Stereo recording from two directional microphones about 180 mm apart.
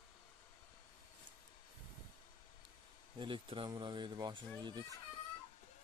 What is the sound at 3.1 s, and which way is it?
Speech, 25° right (ahead or behind).